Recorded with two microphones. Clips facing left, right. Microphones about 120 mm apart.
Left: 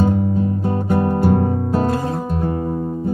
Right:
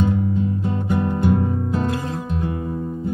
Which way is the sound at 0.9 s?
40° left (ahead or behind).